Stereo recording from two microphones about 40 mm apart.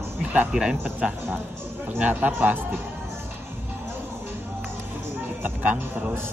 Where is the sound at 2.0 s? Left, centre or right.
Right.